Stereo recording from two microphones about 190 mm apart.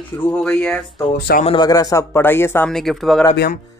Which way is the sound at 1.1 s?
55° left (ahead or behind).